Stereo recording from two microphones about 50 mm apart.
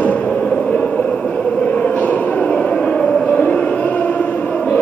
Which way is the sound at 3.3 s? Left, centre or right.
Left.